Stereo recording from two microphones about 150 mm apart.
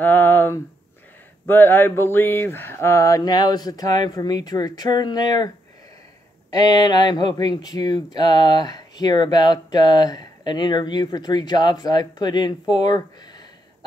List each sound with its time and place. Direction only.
0.0 s speech: 10° left (ahead or behind); by 5.5 s 25° left (ahead or behind)
6.5 s speech: 25° left (ahead or behind)